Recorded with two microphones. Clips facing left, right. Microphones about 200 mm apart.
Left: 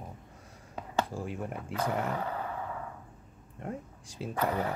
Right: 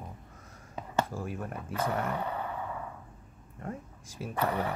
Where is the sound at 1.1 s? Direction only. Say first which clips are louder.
Even; 15° left (ahead or behind).